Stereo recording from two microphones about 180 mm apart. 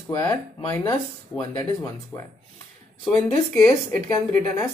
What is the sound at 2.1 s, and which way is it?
Speech, 10° left (ahead or behind).